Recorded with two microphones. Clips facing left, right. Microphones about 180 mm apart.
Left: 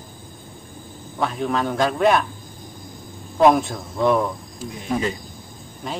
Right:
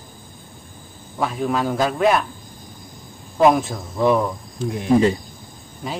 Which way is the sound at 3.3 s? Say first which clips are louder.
Even; centre (ahead or behind).